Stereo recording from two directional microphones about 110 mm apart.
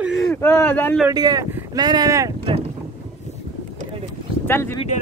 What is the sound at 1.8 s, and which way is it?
Speech, 40° right (ahead or behind).